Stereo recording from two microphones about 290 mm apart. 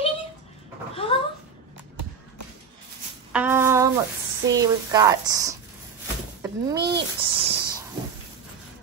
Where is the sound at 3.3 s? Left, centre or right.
Centre.